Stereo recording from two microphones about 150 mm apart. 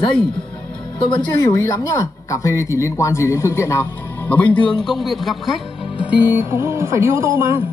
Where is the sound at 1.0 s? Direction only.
30° left (ahead or behind); by 5.6 s centre (ahead or behind).